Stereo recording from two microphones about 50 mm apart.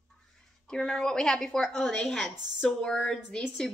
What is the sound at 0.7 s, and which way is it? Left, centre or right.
Speech, centre.